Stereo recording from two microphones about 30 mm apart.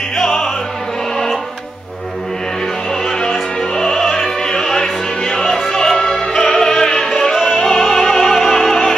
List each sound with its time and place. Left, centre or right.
0.2 s opera: centre
3.7 s opera: centre
5.9 s music: centre